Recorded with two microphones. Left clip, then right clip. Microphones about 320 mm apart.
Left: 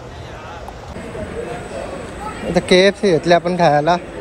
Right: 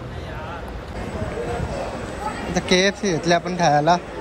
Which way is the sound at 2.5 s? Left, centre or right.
Centre.